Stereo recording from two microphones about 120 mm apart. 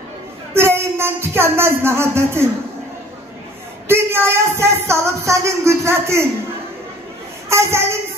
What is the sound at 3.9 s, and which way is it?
Speech, 20° right (ahead or behind).